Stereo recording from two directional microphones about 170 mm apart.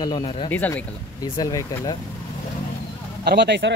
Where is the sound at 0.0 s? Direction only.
25° left (ahead or behind).